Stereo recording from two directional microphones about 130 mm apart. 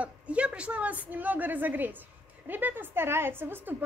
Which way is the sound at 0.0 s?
10° right (ahead or behind).